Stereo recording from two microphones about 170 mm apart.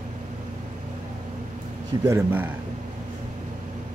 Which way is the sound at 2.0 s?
15° right (ahead or behind).